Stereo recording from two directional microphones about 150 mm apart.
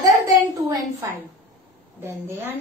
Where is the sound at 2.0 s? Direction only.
15° right (ahead or behind).